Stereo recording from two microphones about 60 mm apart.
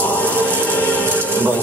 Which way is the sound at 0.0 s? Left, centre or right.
Left.